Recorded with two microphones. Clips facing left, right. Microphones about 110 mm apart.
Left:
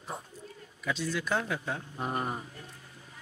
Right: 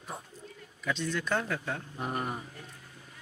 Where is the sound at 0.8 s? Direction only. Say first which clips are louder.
Even; 5° left (ahead or behind).